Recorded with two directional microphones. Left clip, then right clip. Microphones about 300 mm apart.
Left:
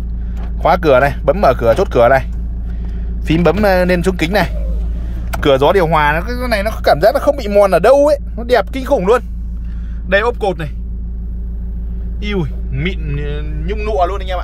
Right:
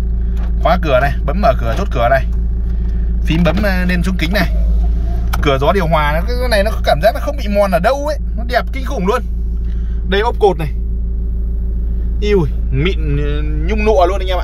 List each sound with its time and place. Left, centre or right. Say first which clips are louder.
0.6 s speech: left 3 dB; left
3.3 s speech: left 5 dB; left
12.2 s speech: right 7 dB; centre